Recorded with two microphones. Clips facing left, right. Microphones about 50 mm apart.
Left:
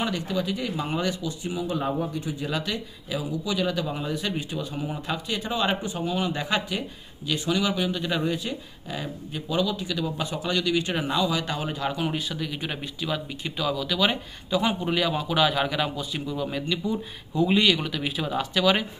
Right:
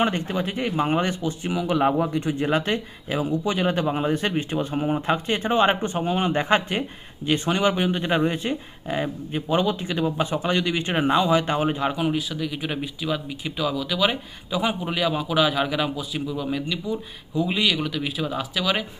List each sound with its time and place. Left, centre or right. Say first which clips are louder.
0.0 s speech: right 4 dB; right
1.5 s speech: right 7 dB; right
12.0 s speech: right 4 dB; centre